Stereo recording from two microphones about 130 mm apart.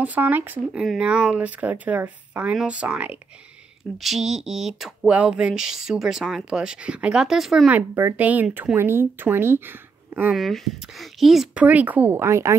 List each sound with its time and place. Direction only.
0.0 s speech: 15° right (ahead or behind)
7.7 s speech: 15° right (ahead or behind)
10.3 s speech: centre (ahead or behind)
11.6 s speech: 10° right (ahead or behind)